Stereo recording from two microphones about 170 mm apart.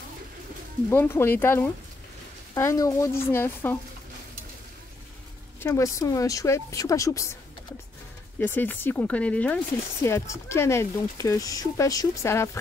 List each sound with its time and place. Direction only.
0.8 s speech: 15° left (ahead or behind)
5.6 s speech: 15° left (ahead or behind)
8.4 s speech: 10° left (ahead or behind)